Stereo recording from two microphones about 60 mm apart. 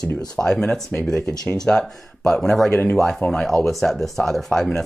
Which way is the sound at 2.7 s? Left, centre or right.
Left.